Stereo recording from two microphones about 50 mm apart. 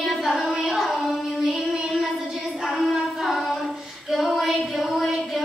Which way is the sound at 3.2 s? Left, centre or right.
Centre.